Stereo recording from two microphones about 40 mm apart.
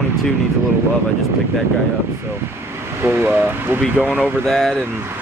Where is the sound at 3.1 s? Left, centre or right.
Right.